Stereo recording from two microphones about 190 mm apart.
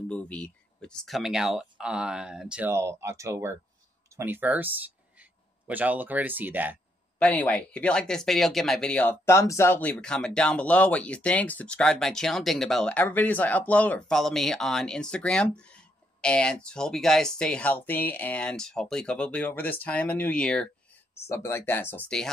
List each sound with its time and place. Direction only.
0.1 s speech: 5° left (ahead or behind); by 6.8 s 10° right (ahead or behind)
7.2 s speech: 5° left (ahead or behind)